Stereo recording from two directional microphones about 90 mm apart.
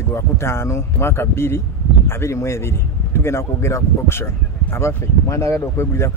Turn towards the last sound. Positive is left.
turn(degrees=30)  # may be behind; listen again after turning